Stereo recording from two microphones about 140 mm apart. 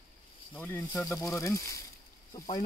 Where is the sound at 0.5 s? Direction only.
15° left (ahead or behind).